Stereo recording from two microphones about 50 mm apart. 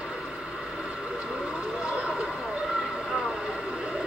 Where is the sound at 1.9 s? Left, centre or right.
Centre.